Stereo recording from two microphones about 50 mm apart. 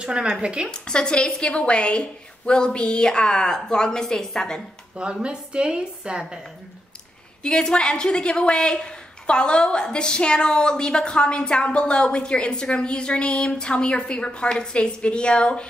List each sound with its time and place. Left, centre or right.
0.0 s a woman's voice: centre
0.7 s a woman's voice: centre
5.2 s a woman's voice: centre
7.4 s a woman's voice: centre